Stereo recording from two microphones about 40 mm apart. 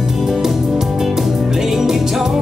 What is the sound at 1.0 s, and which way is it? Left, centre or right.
Music, centre.